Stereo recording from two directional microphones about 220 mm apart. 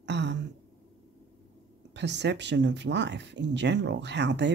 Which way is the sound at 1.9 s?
50° right (ahead or behind).